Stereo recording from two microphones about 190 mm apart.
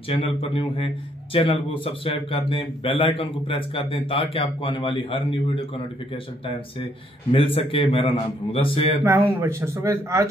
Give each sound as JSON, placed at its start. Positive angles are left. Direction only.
{"t": 0.1, "sound": "a man's voice", "side_deg": 30}
{"t": 7.3, "sound": "a man's voice", "side_deg": 30}
{"t": 9.0, "sound": "a man's voice", "side_deg": -15}